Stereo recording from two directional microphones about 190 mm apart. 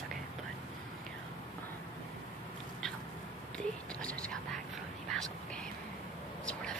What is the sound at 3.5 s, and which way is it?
Whispering, 5° left (ahead or behind).